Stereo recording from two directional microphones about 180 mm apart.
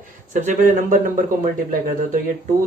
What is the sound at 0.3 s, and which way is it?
Speech, 45° right (ahead or behind).